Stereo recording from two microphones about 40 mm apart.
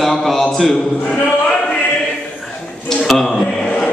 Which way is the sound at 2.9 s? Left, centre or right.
Centre.